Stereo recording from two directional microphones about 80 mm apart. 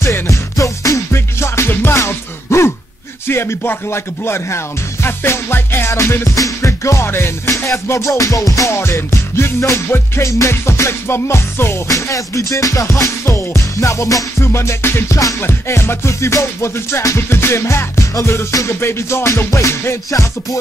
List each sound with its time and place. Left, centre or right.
0.0 s music: left
11.9 s music: left